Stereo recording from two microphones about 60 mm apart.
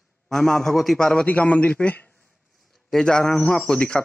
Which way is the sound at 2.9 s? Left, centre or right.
Centre.